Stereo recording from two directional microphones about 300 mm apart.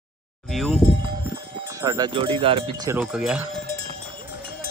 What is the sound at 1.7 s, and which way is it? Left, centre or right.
Speech, centre.